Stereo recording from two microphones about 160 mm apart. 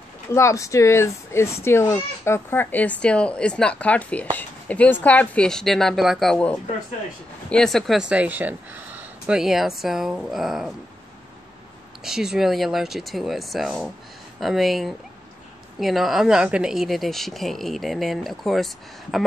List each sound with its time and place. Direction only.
0.3 s speech: 20° left (ahead or behind); by 10.7 s centre (ahead or behind)
12.0 s speech: 5° right (ahead or behind)